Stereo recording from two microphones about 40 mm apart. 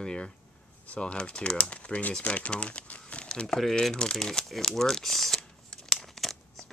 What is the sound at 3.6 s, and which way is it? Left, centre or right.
Speech, centre.